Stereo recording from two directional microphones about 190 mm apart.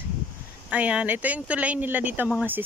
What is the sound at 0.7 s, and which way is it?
Speech, 5° right (ahead or behind).